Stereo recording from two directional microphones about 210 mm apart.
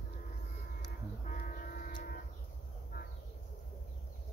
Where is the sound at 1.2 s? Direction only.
40° left (ahead or behind).